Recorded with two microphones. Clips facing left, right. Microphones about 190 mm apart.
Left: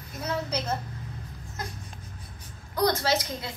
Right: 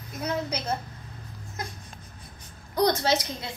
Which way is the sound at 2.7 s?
20° right (ahead or behind).